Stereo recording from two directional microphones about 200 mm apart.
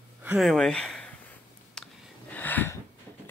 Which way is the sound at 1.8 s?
5° left (ahead or behind).